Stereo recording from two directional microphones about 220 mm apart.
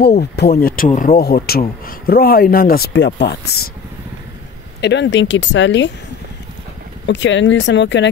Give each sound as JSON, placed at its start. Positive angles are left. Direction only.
{"t": 0.4, "sound": "speech", "side_deg": 45}
{"t": 4.8, "sound": "speech", "side_deg": 55}
{"t": 7.1, "sound": "speech", "side_deg": 55}